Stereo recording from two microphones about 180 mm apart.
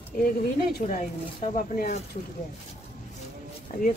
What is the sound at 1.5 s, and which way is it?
Speech, 45° left (ahead or behind).